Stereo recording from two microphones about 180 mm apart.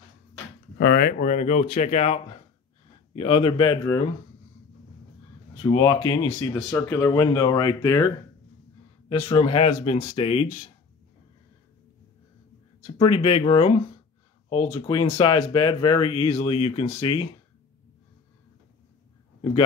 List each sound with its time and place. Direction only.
0.7 s speech: 60° left (ahead or behind); by 4.0 s 20° left (ahead or behind)
5.6 s speech: 25° left (ahead or behind)
6.0 s speech: 15° left (ahead or behind)
9.3 s speech: 30° left (ahead or behind)
12.8 s speech: 30° left (ahead or behind)